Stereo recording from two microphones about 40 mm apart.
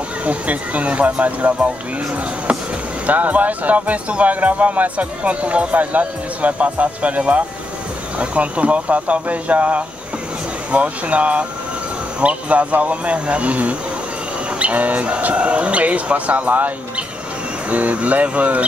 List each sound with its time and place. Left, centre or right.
0.2 s speech: right
3.1 s speech: right